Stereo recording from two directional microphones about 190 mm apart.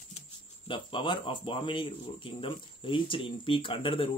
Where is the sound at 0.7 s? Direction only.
25° left (ahead or behind).